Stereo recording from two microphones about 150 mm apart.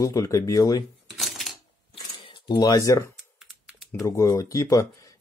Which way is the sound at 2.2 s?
30° left (ahead or behind).